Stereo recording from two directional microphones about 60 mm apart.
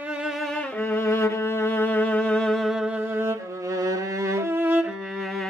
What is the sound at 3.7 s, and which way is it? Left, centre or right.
Music, right.